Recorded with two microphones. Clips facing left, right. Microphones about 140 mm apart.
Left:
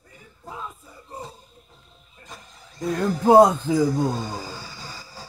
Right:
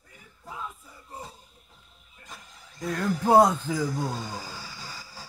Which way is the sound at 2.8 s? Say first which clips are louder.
Left 5 dB; 25° left (ahead or behind).